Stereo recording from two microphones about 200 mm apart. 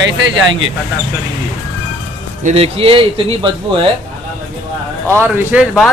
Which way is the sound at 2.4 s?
30° right (ahead or behind).